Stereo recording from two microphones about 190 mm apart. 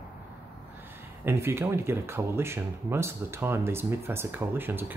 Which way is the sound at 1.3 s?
10° right (ahead or behind).